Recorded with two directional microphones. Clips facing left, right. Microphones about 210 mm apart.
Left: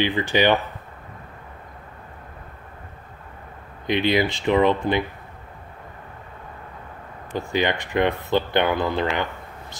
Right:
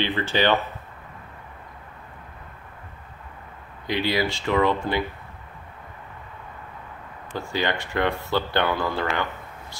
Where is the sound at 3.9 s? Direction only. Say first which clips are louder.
Left 4 dB; 20° left (ahead or behind).